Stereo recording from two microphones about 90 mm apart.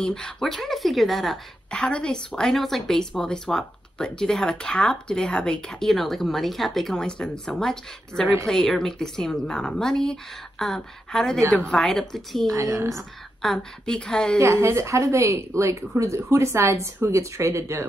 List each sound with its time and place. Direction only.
0.0 s a woman's voice: 10° left (ahead or behind)
12.5 s speech: 35° right (ahead or behind)
12.9 s a woman's voice: 5° left (ahead or behind)
14.4 s speech: 30° right (ahead or behind)